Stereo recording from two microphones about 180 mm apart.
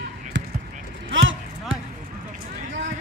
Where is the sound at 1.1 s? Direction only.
90° right.